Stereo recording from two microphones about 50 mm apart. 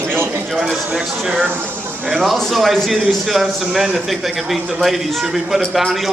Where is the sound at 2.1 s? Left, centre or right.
Centre.